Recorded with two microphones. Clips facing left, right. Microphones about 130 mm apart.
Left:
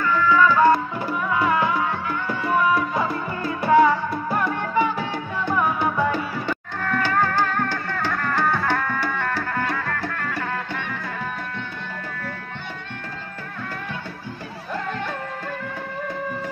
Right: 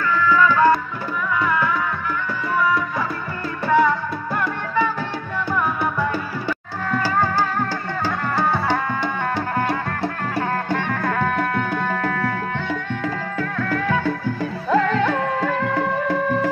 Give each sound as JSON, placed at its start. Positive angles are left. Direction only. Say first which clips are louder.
{"t": 0.5, "sound": "music", "louder": "even", "side_deg": 5}
{"t": 1.3, "sound": "music", "louder": "even", "side_deg": 25}
{"t": 3.6, "sound": "music", "louder": "left 1 dB", "side_deg": 15}
{"t": 6.9, "sound": "music", "louder": "right 1 dB", "side_deg": -10}
{"t": 14.7, "sound": "music", "louder": "right 10 dB", "side_deg": -90}